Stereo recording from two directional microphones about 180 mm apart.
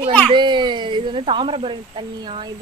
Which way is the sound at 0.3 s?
25° right (ahead or behind).